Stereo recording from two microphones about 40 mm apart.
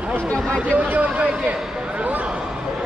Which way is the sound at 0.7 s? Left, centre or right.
Right.